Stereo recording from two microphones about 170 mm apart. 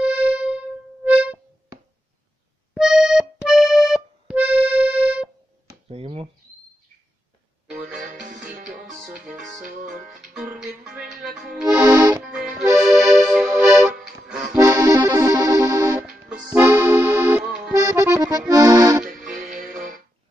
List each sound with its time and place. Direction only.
0.0 s music: 10° right (ahead or behind)
2.7 s accordion: 5° right (ahead or behind)
5.9 s a sound: 35° right (ahead or behind)
7.9 s music: 50° right (ahead or behind)
10.0 s music: 5° right (ahead or behind)
11.6 s accordion: 15° right (ahead or behind)
12.2 s accordion: 5° right (ahead or behind)
14.6 s accordion: 15° right (ahead or behind)
19.3 s music: 50° right (ahead or behind)